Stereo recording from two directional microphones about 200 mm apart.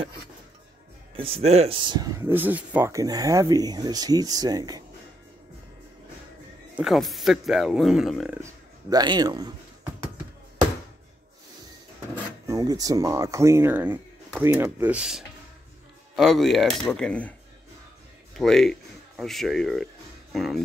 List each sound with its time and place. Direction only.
1.1 s speech: 30° right (ahead or behind)
6.8 s speech: centre (ahead or behind)
8.9 s speech: 20° right (ahead or behind)
12.4 s speech: 20° right (ahead or behind); by 17.3 s 5° left (ahead or behind)
18.4 s speech: 5° left (ahead or behind)